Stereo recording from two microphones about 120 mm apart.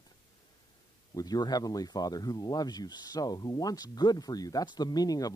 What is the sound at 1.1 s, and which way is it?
Speech, 35° left (ahead or behind).